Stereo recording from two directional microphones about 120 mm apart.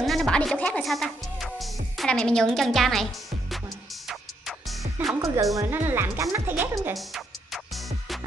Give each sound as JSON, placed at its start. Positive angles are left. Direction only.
{"t": 0.0, "sound": "music", "side_deg": 0}
{"t": 5.2, "sound": "speech", "side_deg": -30}
{"t": 5.6, "sound": "speech", "side_deg": -15}
{"t": 7.0, "sound": "music", "side_deg": 0}